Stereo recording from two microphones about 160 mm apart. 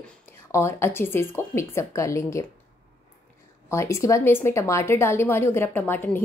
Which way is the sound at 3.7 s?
20° left (ahead or behind).